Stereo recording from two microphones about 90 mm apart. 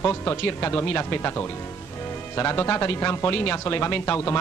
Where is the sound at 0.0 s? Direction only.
30° left (ahead or behind).